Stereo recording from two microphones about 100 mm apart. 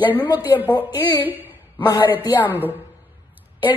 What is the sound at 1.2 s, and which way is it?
Speech, 20° right (ahead or behind).